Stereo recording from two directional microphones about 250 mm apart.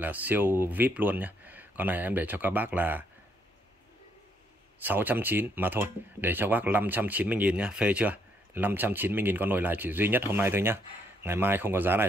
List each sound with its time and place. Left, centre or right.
0.0 s speech: centre
4.7 s speech: centre